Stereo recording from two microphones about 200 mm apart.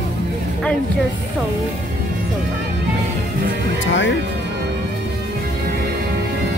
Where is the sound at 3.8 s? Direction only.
65° left (ahead or behind).